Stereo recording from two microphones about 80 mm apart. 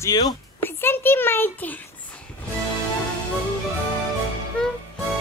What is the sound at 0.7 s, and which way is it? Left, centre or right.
Speech, left.